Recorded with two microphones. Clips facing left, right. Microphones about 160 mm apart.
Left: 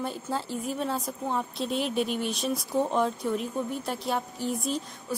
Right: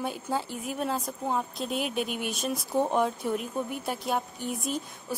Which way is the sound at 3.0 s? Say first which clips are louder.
Left 1 dB; 5° right (ahead or behind).